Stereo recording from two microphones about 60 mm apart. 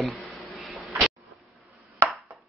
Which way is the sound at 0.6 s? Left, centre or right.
Centre.